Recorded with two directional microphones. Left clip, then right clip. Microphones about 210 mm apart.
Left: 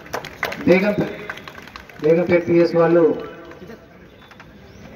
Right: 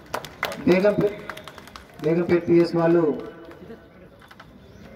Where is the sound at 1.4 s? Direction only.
60° right (ahead or behind).